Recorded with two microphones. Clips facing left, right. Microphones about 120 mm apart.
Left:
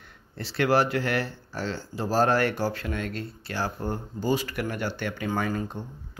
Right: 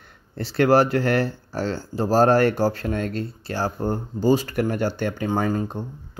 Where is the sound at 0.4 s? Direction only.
40° right (ahead or behind).